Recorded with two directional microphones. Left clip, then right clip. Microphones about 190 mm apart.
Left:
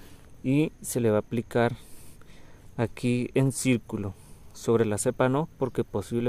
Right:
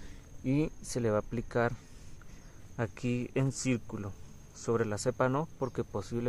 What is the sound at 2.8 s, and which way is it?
Speech, 50° left (ahead or behind).